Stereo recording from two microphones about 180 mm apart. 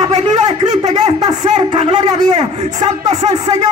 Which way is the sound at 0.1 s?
40° right (ahead or behind).